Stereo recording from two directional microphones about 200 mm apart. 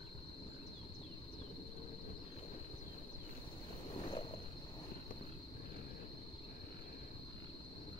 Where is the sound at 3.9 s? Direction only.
25° left (ahead or behind).